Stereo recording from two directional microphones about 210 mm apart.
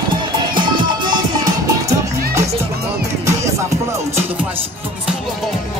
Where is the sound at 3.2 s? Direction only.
15° right (ahead or behind).